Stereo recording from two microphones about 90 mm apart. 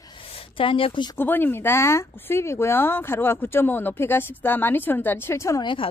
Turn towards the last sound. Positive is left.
turn(degrees=65)  # may be behind; listen again after turning